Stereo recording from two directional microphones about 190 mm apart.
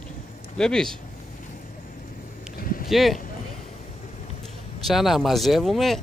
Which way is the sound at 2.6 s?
50° left (ahead or behind).